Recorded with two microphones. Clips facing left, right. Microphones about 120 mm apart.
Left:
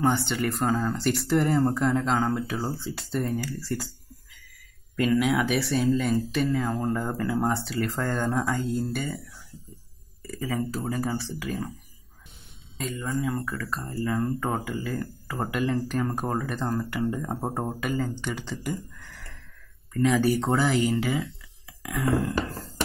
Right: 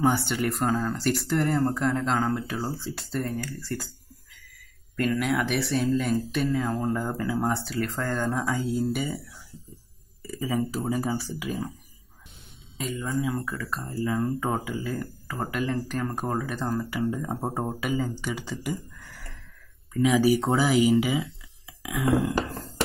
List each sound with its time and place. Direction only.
0.0 s speech: 5° right (ahead or behind)
10.2 s speech: centre (ahead or behind)
12.7 s speech: centre (ahead or behind)